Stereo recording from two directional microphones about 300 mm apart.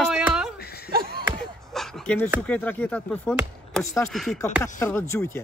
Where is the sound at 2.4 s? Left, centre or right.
Centre.